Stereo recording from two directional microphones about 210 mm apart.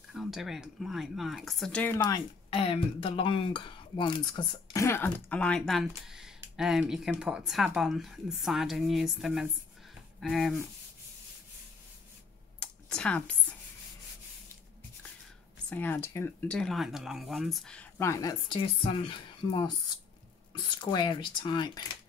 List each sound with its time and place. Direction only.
0.1 s speech: centre (ahead or behind)
2.0 s speech: 20° left (ahead or behind); by 10.7 s centre (ahead or behind)
12.5 s a sound: 5° left (ahead or behind)
15.7 s speech: 10° left (ahead or behind)
20.8 s speech: 20° left (ahead or behind)